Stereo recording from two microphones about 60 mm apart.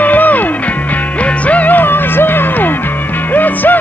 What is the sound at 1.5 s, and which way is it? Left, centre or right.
Music, left.